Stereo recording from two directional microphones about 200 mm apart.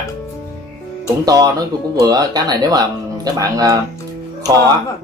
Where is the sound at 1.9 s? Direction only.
20° right (ahead or behind).